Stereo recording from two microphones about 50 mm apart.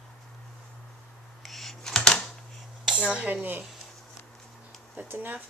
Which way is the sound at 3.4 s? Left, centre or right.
Right.